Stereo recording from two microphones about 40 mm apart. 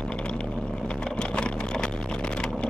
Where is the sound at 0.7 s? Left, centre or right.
Centre.